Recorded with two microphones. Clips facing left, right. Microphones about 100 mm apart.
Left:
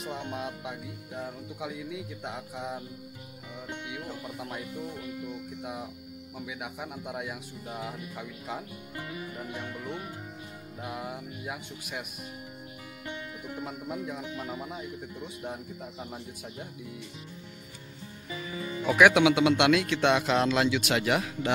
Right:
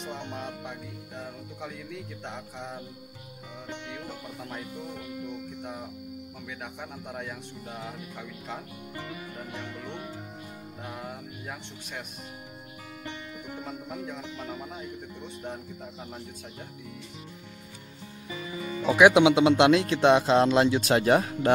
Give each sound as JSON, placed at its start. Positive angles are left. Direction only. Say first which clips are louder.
{"t": 0.0, "sound": "music", "louder": "left 1 dB", "side_deg": 5}
{"t": 3.9, "sound": "music", "louder": "left 1 dB", "side_deg": 10}
{"t": 13.7, "sound": "music", "louder": "left 2 dB", "side_deg": 10}
{"t": 18.6, "sound": "speech", "louder": "right 2 dB", "side_deg": -25}